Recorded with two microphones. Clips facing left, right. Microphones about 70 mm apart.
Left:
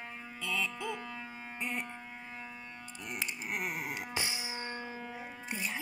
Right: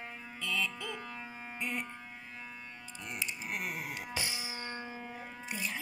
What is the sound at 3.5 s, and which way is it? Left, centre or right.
Music, left.